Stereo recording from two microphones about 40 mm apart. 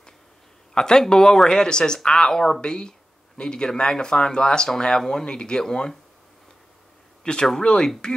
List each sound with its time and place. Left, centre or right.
0.7 s speech: centre
7.2 s speech: left